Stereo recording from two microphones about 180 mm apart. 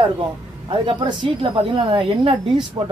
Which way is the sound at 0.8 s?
25° right (ahead or behind).